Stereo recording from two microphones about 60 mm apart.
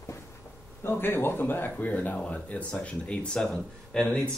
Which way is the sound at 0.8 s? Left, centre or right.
Left.